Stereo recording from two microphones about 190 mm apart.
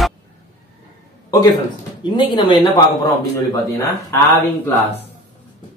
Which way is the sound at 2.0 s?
25° left (ahead or behind).